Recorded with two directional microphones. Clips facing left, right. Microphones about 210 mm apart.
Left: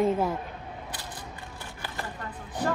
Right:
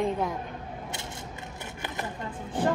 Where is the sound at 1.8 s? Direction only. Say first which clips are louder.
Right 2 dB; 20° right (ahead or behind).